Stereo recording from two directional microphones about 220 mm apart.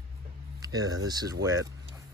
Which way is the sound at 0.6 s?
15° right (ahead or behind).